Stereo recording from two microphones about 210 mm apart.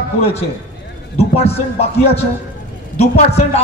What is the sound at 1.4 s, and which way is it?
Speech, 30° left (ahead or behind).